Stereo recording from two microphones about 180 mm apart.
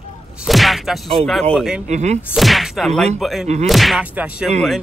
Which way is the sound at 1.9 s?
40° right (ahead or behind).